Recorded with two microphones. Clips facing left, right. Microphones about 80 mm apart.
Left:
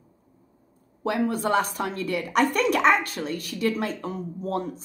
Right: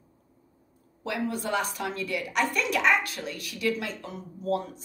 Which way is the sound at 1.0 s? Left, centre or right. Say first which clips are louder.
Left 6 dB; left.